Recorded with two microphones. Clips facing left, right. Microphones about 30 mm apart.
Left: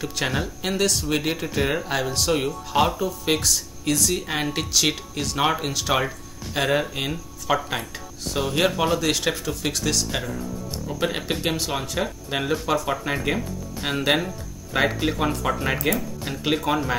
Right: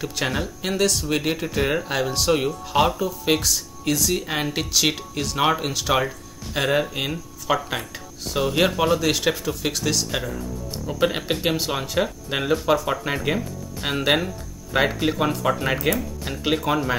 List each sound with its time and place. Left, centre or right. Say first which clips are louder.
0.0 s speech: even; centre